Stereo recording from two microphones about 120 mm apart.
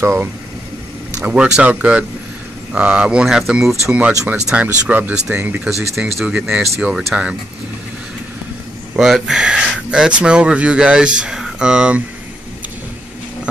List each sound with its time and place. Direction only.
0.0 s speech: 20° right (ahead or behind)
5.7 s speech: centre (ahead or behind)
8.9 s speech: 5° right (ahead or behind)